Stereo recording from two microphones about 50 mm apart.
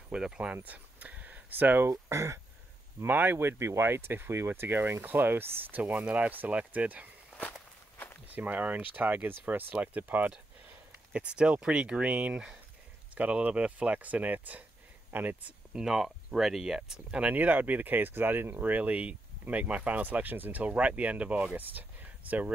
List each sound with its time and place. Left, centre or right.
0.1 s speech: centre
0.7 s a sound: right
1.9 s speech: right
3.1 s speech: right
3.3 s speech: right
5.8 s speech: right
8.4 s speech: right
11.1 s speech: right
15.7 s speech: centre
17.2 s speech: right
20.6 s speech: right
21.5 s a sound: right